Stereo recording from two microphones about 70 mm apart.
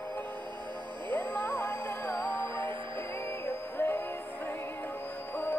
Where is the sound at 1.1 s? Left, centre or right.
Left.